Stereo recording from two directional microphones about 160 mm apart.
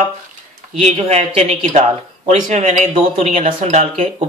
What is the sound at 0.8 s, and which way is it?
A man's voice, 45° right (ahead or behind).